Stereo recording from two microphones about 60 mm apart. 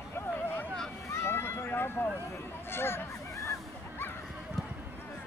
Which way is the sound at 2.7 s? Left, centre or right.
Left.